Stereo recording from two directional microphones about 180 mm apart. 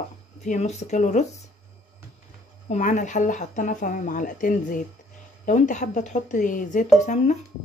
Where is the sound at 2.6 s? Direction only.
40° left (ahead or behind).